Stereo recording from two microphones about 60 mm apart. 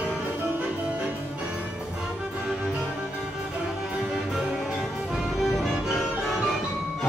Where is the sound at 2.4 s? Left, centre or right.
Centre.